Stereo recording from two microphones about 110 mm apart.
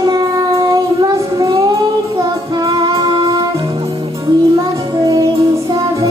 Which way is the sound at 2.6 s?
45° right (ahead or behind).